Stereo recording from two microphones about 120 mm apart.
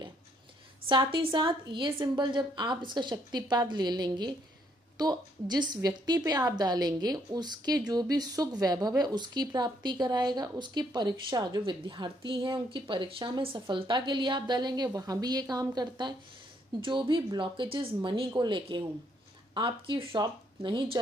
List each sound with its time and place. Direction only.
0.8 s a woman's voice: 45° right (ahead or behind)